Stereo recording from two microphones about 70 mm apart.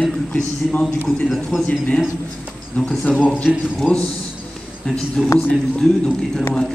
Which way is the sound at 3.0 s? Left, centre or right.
Centre.